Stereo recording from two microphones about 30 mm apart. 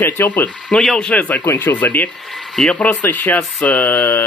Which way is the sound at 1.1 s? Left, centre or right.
Left.